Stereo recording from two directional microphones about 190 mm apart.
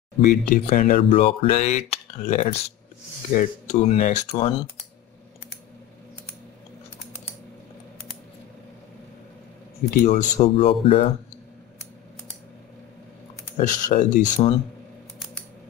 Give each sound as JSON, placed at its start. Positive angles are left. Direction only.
{"t": 0.2, "sound": "speech", "side_deg": 50}
{"t": 1.1, "sound": "speech", "side_deg": 30}
{"t": 9.8, "sound": "speech", "side_deg": 40}
{"t": 13.6, "sound": "speech", "side_deg": 45}